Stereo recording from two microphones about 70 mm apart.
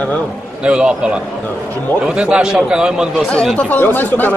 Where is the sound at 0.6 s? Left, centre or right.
Centre.